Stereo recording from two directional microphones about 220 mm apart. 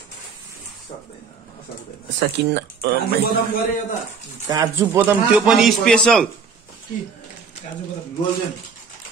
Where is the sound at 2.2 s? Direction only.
45° right (ahead or behind).